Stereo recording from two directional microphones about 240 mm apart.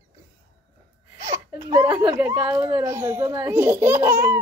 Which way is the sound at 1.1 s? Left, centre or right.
Centre.